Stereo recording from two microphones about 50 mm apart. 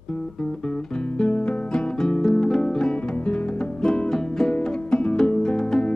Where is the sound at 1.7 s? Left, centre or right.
Centre.